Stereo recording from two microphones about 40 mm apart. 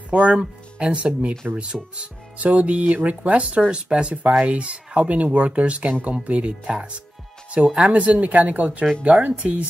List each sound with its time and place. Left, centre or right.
0.1 s speech: right
7.9 s speech: right